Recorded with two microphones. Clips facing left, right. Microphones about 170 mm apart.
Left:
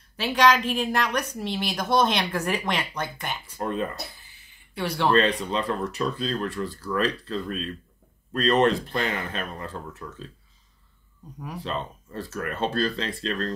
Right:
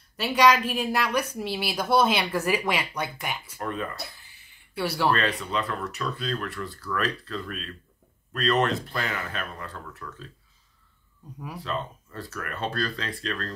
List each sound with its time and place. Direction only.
0.2 s a woman's voice: 5° right (ahead or behind)
3.5 s speech: 25° left (ahead or behind)
4.7 s a woman's voice: 5° right (ahead or behind)
5.1 s speech: 30° left (ahead or behind)
11.3 s speech: 5° right (ahead or behind)
11.6 s speech: 25° left (ahead or behind)